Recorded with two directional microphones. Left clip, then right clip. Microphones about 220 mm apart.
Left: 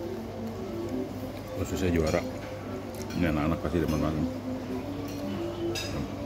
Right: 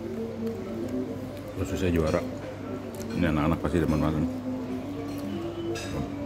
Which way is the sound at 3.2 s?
15° right (ahead or behind).